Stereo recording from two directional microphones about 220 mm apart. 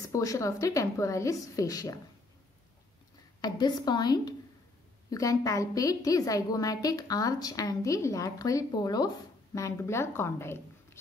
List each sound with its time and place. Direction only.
0.0 s a woman's voice: 15° left (ahead or behind)
3.3 s a woman's voice: 20° left (ahead or behind)